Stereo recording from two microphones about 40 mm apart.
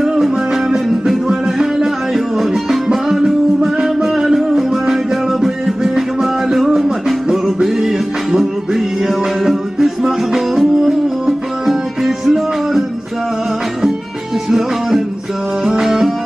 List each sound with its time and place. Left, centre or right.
0.0 s music: centre
2.1 s music: centre
6.5 s music: centre
15.8 s music: centre